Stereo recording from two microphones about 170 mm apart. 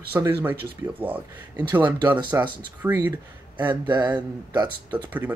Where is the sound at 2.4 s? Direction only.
25° right (ahead or behind).